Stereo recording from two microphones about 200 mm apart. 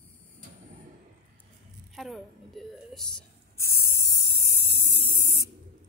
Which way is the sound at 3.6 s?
15° left (ahead or behind).